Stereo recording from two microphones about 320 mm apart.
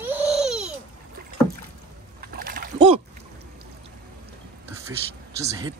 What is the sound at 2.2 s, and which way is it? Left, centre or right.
Boat, right.